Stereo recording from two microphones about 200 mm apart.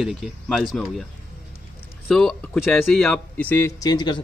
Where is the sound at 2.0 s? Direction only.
Centre (ahead or behind).